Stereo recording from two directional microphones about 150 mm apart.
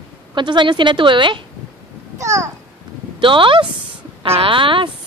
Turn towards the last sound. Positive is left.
turn(degrees=-35)  # may be behind; listen again after turning